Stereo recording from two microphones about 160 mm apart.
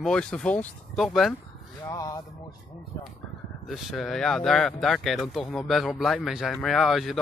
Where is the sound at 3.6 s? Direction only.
Centre (ahead or behind).